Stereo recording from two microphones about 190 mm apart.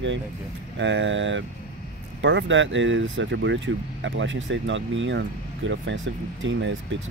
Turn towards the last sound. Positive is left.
turn(degrees=-75)  # may be behind; listen again after turning